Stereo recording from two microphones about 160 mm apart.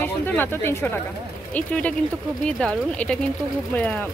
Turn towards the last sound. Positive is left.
turn(degrees=10)  # may be behind; listen again after turning